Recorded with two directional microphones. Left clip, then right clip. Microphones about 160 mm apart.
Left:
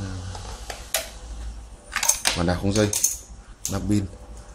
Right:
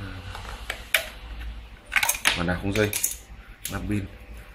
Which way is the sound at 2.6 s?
70° left (ahead or behind).